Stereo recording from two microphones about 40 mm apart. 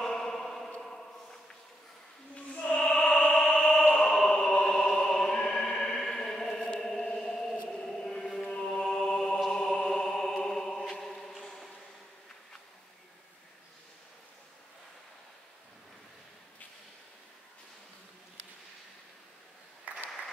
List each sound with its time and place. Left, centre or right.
0.0 s a sound: centre
2.5 s music: left
2.8 s opera: centre
3.9 s music: centre
6.8 s a sound: centre
7.7 s chant: centre
8.9 s music: centre
10.0 s chant: centre
19.9 s applause: right